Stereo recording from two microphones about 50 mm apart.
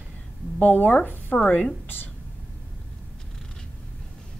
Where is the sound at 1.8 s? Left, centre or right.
Left.